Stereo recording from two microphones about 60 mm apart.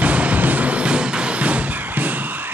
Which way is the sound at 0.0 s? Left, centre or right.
Right.